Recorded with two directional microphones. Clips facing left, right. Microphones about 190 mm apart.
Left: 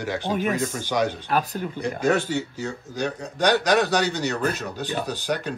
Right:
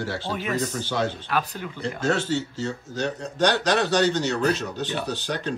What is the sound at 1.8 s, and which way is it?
Speech, 15° left (ahead or behind).